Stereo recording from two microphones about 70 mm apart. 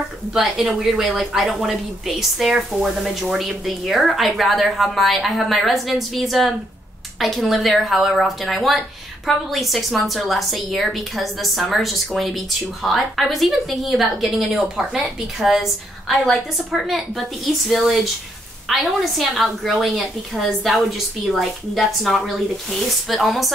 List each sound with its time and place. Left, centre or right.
0.3 s speech: centre